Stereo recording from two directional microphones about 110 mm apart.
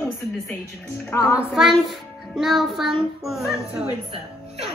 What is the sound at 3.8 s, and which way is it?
Music, 60° right (ahead or behind).